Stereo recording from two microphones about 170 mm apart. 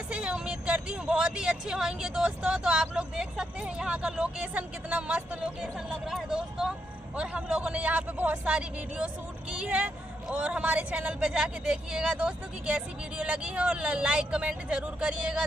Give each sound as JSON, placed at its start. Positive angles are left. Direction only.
{"t": 0.1, "sound": "a man's voice", "side_deg": -5}